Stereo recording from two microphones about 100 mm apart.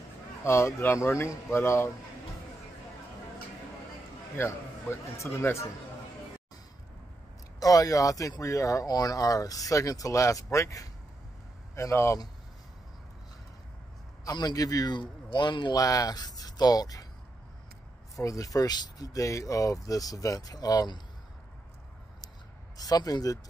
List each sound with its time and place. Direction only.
0.4 s speech: 30° left (ahead or behind)
4.4 s speech: 30° left (ahead or behind)
7.6 s speech: 35° left (ahead or behind)
14.2 s a man's voice: 40° left (ahead or behind)
15.8 s speech: 35° left (ahead or behind)
18.1 s speech: 35° left (ahead or behind)
22.8 s speech: 40° left (ahead or behind)